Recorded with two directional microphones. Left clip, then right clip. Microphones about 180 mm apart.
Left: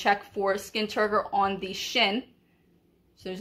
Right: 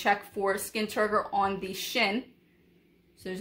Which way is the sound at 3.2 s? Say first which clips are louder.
Left 1 dB; 5° right (ahead or behind).